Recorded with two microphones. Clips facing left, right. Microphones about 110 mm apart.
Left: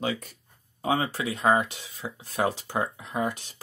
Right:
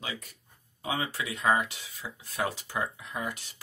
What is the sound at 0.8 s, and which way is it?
Speech, 35° left (ahead or behind).